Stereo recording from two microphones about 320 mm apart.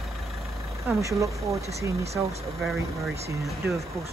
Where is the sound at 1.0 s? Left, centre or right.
Centre.